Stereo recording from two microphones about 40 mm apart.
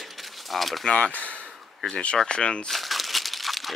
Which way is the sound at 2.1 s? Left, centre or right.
Left.